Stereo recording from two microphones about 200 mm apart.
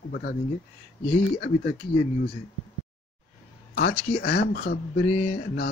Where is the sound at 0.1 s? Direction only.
50° left (ahead or behind).